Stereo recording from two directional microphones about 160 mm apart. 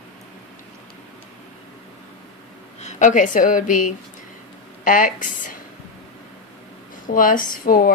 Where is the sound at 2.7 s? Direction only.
50° left (ahead or behind).